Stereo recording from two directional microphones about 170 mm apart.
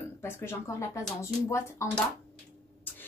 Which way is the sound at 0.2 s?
15° left (ahead or behind).